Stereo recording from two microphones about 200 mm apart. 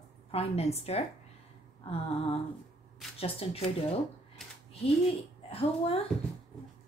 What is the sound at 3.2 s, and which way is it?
Speech, 30° left (ahead or behind).